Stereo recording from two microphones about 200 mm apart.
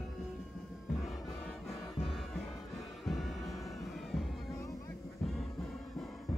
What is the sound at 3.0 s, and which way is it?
Music, centre (ahead or behind).